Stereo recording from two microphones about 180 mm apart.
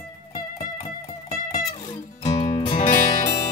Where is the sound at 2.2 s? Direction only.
20° left (ahead or behind).